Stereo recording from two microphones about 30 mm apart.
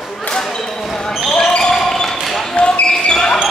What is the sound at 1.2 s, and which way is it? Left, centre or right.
Basketball bounce, centre.